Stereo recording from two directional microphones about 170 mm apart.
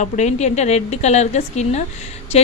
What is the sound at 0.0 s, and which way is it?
A woman's voice, 45° left (ahead or behind).